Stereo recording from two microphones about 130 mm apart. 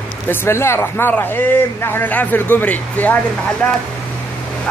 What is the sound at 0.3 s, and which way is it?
Speech, 20° left (ahead or behind).